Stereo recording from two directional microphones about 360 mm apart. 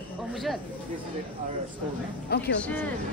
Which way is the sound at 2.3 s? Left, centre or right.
Left.